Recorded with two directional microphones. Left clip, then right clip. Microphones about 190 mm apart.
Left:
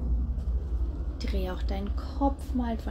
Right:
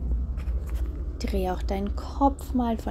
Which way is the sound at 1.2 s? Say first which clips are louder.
Right 7 dB; 35° right (ahead or behind).